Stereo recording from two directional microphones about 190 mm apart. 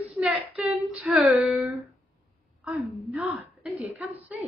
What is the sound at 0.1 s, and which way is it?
Female singing, 5° right (ahead or behind).